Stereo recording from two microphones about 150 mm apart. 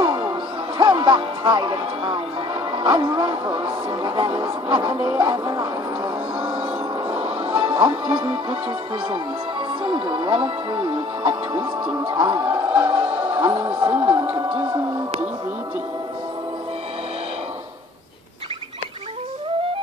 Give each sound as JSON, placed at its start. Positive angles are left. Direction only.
{"t": 0.0, "sound": "music", "side_deg": -30}
{"t": 2.7, "sound": "speech", "side_deg": -30}
{"t": 5.0, "sound": "music", "side_deg": -25}
{"t": 7.2, "sound": "music", "side_deg": -40}
{"t": 9.8, "sound": "speech", "side_deg": -35}
{"t": 12.8, "sound": "music", "side_deg": -10}
{"t": 13.3, "sound": "music", "side_deg": -30}
{"t": 13.6, "sound": "speech", "side_deg": -10}